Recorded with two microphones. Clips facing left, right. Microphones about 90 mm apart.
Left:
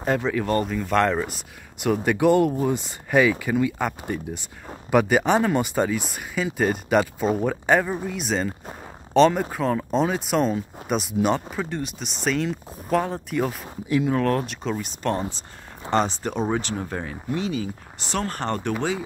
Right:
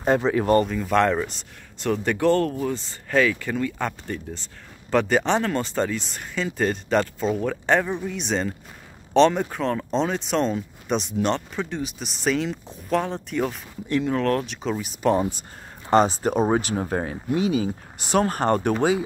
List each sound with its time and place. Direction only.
0.0 s speech: 25° right (ahead or behind)
0.5 s speech: centre (ahead or behind)
16.3 s speech: 35° right (ahead or behind)
17.3 s speech: 15° right (ahead or behind)